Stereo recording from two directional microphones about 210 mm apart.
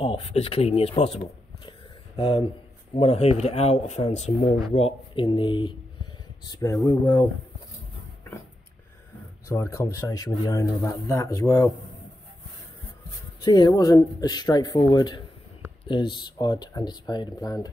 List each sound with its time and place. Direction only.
0.0 s speech: 30° left (ahead or behind)
9.5 s speech: 15° left (ahead or behind)
13.4 s speech: 20° left (ahead or behind)